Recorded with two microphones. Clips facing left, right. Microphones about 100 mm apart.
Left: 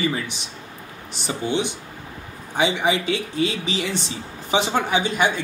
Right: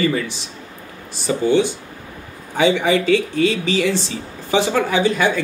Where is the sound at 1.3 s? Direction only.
20° left (ahead or behind).